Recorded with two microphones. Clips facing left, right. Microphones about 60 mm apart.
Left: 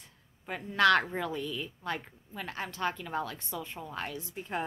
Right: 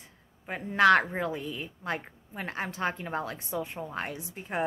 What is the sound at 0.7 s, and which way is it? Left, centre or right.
A woman's voice, right.